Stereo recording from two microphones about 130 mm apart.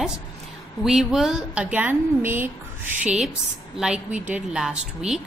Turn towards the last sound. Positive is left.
turn(degrees=-5)  # may be behind; listen again after turning